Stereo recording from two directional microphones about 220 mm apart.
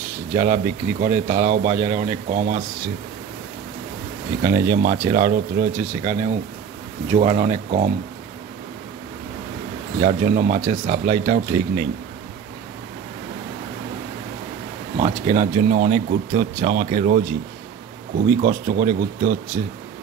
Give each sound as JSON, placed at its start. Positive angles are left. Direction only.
{"t": 0.3, "sound": "speech", "side_deg": -35}
{"t": 4.4, "sound": "speech", "side_deg": -40}
{"t": 9.9, "sound": "speech", "side_deg": -40}
{"t": 15.0, "sound": "speech", "side_deg": -35}